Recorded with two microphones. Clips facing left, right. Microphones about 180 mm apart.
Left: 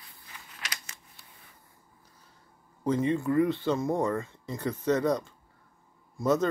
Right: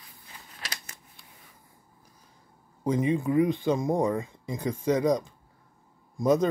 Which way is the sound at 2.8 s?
15° right (ahead or behind).